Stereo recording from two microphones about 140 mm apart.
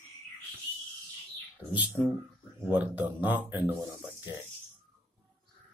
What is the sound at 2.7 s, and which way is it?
Speech, 10° right (ahead or behind).